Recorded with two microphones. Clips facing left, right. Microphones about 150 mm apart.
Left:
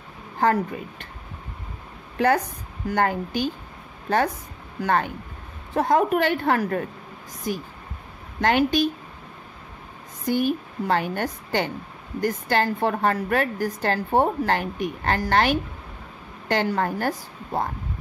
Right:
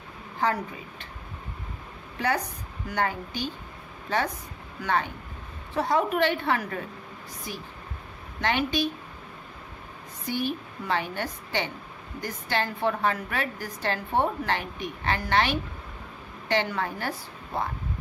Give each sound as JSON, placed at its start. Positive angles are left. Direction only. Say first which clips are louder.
{"t": 0.4, "sound": "a woman's voice", "louder": "left 6 dB", "side_deg": 50}
{"t": 2.1, "sound": "a woman's voice", "louder": "left 7 dB", "side_deg": 50}
{"t": 4.8, "sound": "a woman's voice", "louder": "left 4 dB", "side_deg": 50}
{"t": 8.4, "sound": "a woman's voice", "louder": "left 6 dB", "side_deg": 50}
{"t": 10.2, "sound": "a woman's voice", "louder": "left 7 dB", "side_deg": 45}